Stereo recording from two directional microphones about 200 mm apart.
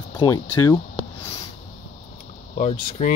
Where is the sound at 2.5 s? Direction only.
35° left (ahead or behind).